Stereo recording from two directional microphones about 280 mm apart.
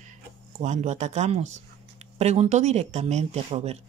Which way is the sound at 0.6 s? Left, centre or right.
Right.